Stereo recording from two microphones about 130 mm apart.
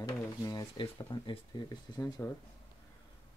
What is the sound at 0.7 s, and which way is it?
Speech, 40° left (ahead or behind).